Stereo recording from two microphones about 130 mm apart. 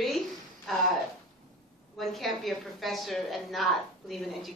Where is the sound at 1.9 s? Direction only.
Centre (ahead or behind).